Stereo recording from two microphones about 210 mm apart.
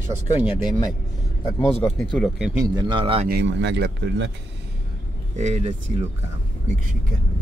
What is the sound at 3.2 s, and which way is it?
Speech, 55° right (ahead or behind).